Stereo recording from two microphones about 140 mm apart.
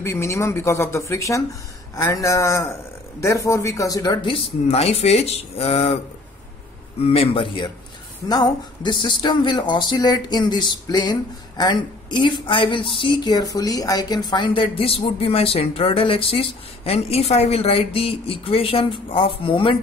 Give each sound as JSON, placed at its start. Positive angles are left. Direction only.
{"t": 0.0, "sound": "a woman's voice", "side_deg": 20}
{"t": 7.1, "sound": "speech", "side_deg": 40}